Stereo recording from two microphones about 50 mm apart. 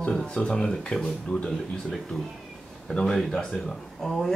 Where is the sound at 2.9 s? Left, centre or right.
Centre.